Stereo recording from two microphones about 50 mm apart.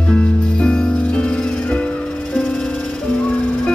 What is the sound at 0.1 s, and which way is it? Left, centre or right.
Music, centre.